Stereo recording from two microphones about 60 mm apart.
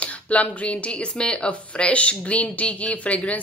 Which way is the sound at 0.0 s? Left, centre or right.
Left.